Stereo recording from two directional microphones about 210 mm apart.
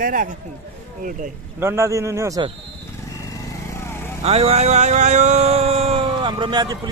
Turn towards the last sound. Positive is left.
turn(degrees=-20)  # may be behind; listen again after turning